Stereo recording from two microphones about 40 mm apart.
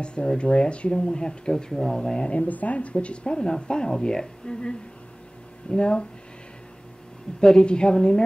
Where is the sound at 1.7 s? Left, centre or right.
Centre.